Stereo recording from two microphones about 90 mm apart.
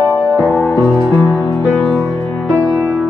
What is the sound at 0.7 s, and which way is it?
Music, 15° right (ahead or behind).